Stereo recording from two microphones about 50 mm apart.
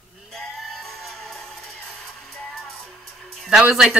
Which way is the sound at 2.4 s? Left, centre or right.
Centre.